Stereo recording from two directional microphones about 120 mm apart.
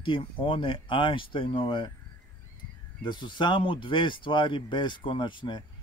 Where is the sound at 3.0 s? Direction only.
40° left (ahead or behind).